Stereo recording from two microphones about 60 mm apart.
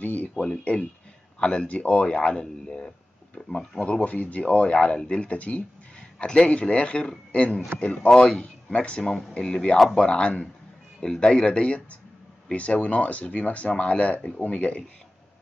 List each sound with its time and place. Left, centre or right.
0.0 s a sound: left
0.4 s speech: centre
8.1 s speech: centre